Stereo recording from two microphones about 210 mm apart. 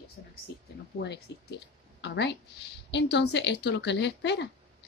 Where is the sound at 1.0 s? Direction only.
55° left (ahead or behind).